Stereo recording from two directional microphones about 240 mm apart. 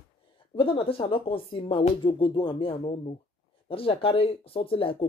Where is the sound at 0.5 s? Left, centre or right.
Left.